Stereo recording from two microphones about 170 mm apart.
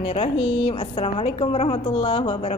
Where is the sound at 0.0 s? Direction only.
35° left (ahead or behind).